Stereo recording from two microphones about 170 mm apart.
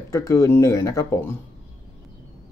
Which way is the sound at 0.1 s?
20° left (ahead or behind).